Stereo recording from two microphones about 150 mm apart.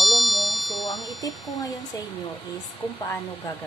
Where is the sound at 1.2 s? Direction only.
25° left (ahead or behind).